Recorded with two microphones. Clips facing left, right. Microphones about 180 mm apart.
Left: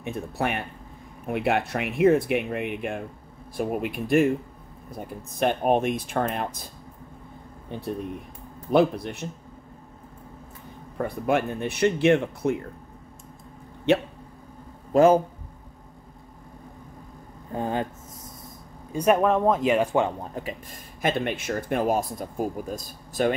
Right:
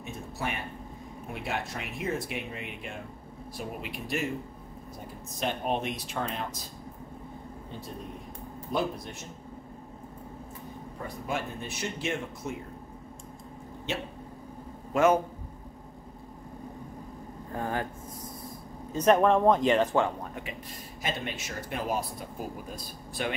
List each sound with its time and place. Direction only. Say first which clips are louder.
0.0 s speech: left 7 dB; 60° left (ahead or behind)
8.7 s speech: left 10 dB; 65° left (ahead or behind)
11.0 s speech: left 10 dB; 60° left (ahead or behind)
13.9 s speech: left 13 dB; 60° left (ahead or behind)
14.9 s a man's voice: left 6 dB; 35° left (ahead or behind)
17.5 s speech: left 5 dB; 20° left (ahead or behind)
18.9 s speech: left 1 dB; 10° left (ahead or behind)
20.4 s speech: left 7 dB; 35° left (ahead or behind)
21.0 s speech: left 9 dB; 55° left (ahead or behind)